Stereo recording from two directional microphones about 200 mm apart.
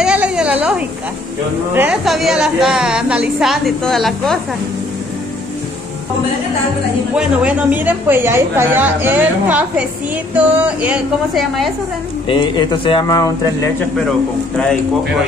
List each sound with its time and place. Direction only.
0.0 s a sound: 5° right (ahead or behind)
1.7 s a woman's voice: 10° right (ahead or behind)
7.2 s a woman's voice: 5° right (ahead or behind)
12.3 s speech: 25° left (ahead or behind)